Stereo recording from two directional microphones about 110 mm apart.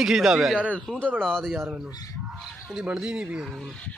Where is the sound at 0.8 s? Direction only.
10° left (ahead or behind).